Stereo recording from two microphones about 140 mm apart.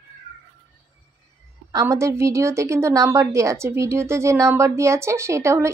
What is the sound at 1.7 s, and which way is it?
A woman's voice, 20° right (ahead or behind).